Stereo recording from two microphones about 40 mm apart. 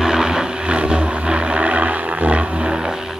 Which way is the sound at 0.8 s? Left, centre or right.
Right.